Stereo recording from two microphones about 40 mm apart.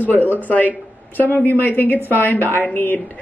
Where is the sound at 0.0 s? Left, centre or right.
Left.